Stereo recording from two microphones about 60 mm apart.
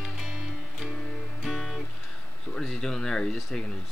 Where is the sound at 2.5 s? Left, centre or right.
Centre.